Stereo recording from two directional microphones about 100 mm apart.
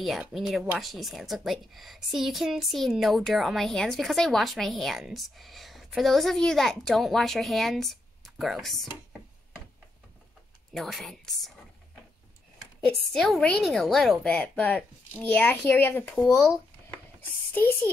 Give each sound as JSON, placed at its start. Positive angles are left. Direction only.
{"t": 0.2, "sound": "a woman's voice", "side_deg": 0}
{"t": 10.7, "sound": "a sound", "side_deg": 0}
{"t": 12.8, "sound": "a woman's voice", "side_deg": 5}
{"t": 14.3, "sound": "speech", "side_deg": 15}
{"t": 17.6, "sound": "speech", "side_deg": 20}